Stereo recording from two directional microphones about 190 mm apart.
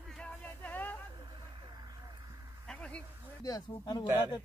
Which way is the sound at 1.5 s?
20° right (ahead or behind).